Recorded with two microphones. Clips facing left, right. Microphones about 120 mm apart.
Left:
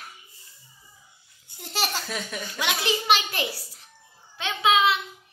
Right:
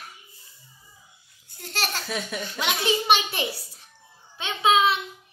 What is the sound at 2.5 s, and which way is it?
Speech, 20° right (ahead or behind).